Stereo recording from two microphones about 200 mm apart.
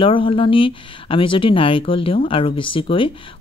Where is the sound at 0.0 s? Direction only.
25° left (ahead or behind).